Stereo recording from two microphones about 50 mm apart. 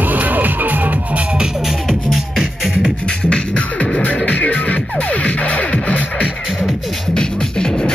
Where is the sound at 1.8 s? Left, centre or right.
Centre.